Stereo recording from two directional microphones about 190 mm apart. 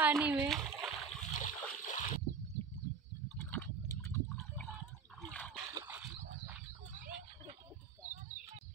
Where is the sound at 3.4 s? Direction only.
10° left (ahead or behind).